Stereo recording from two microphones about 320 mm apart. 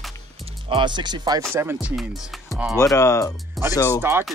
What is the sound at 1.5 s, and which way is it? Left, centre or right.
Music, centre.